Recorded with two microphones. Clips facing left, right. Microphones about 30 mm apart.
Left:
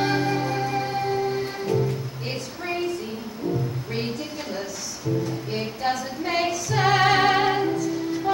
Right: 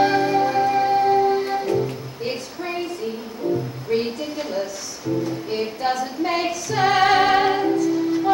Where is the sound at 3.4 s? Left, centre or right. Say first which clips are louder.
Right 4 dB; centre.